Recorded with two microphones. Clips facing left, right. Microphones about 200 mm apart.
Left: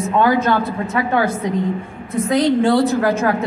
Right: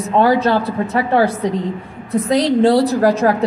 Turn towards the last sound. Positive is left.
turn(degrees=-35)  # may be behind; listen again after turning